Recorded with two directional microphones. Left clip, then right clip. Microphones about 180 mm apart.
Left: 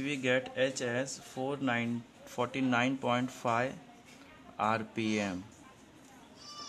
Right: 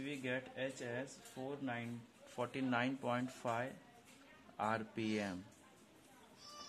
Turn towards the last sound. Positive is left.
turn(degrees=5)  # may be behind; listen again after turning